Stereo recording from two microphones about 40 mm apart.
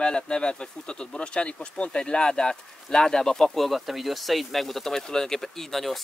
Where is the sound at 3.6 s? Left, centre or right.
Centre.